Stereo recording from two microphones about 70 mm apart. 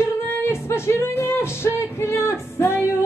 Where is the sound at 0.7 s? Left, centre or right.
Left.